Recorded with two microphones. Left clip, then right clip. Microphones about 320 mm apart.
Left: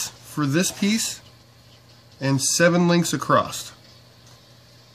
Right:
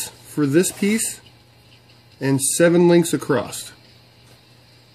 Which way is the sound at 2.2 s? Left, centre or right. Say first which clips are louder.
Right 2 dB; centre.